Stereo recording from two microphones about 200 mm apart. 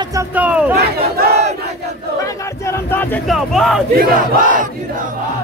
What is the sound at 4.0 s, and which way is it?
Crowd, 40° right (ahead or behind).